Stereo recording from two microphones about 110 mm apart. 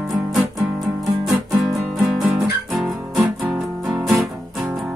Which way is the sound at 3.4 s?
10° right (ahead or behind).